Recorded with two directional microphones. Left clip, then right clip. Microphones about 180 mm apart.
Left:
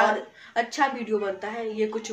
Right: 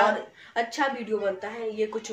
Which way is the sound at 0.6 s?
15° left (ahead or behind).